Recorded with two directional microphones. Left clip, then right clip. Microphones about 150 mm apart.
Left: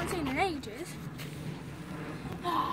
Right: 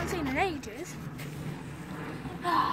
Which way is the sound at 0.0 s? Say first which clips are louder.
Right 1 dB; 15° right (ahead or behind).